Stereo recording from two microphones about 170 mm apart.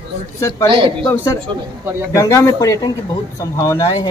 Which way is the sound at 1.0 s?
15° left (ahead or behind).